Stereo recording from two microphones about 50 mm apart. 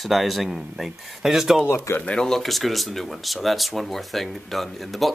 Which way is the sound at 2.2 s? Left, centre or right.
Centre.